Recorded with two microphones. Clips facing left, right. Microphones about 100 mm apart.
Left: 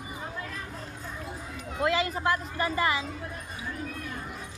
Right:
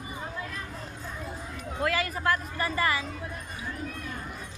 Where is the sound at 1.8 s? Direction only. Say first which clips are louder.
Left 2 dB; 20° left (ahead or behind).